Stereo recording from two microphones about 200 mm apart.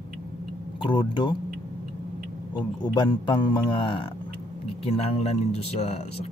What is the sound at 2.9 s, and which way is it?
Speech, 20° left (ahead or behind).